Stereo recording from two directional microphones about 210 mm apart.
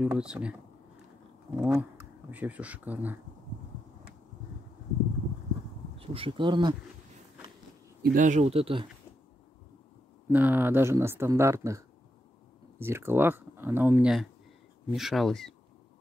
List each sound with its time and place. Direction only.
0.0 s speech: 5° right (ahead or behind)
1.6 s speech: 5° right (ahead or behind)
5.9 s speech: 25° right (ahead or behind)
8.0 s speech: 40° right (ahead or behind)
10.2 s speech: 10° right (ahead or behind)